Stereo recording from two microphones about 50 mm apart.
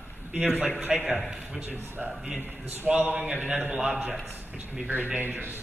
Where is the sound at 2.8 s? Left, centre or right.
Right.